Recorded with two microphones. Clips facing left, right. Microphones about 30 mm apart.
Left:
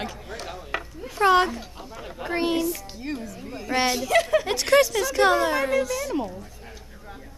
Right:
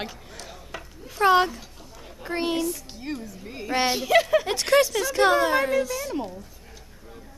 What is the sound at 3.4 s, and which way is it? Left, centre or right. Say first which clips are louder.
Speech: even; centre.